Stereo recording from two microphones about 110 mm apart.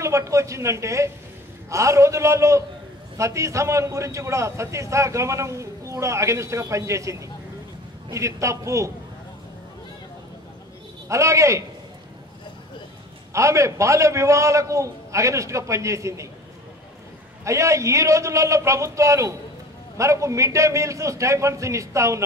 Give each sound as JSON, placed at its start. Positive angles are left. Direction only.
{"t": 0.0, "sound": "a man's voice", "side_deg": -30}
{"t": 11.1, "sound": "a man's voice", "side_deg": -30}
{"t": 13.3, "sound": "a man's voice", "side_deg": -30}
{"t": 17.5, "sound": "a man's voice", "side_deg": -30}